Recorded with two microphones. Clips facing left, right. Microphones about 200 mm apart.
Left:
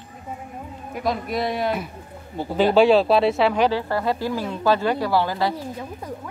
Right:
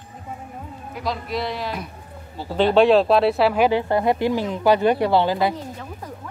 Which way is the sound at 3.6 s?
20° right (ahead or behind).